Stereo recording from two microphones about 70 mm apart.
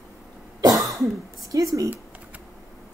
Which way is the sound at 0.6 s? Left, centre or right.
Right.